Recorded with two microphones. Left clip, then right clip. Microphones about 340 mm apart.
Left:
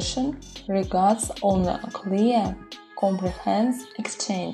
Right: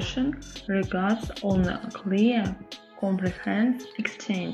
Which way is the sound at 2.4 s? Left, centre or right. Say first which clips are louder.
Left 5 dB; centre.